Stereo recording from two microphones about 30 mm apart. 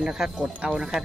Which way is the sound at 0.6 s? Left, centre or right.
Right.